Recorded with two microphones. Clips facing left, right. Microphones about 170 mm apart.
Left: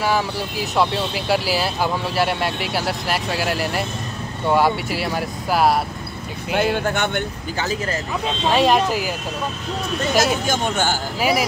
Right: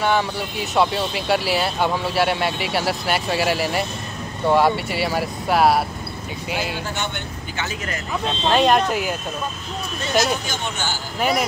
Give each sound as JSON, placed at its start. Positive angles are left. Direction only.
{"t": 0.0, "sound": "speech", "side_deg": 0}
{"t": 6.5, "sound": "speech", "side_deg": 60}
{"t": 7.5, "sound": "speech", "side_deg": 35}
{"t": 8.5, "sound": "speech", "side_deg": 0}
{"t": 10.1, "sound": "speech", "side_deg": 0}
{"t": 10.4, "sound": "speech", "side_deg": 45}
{"t": 11.1, "sound": "speech", "side_deg": 5}